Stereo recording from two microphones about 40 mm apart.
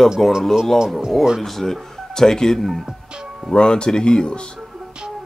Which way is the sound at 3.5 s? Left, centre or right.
Left.